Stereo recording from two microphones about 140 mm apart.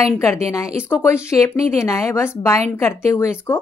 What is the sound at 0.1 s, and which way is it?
A woman's voice, 20° left (ahead or behind).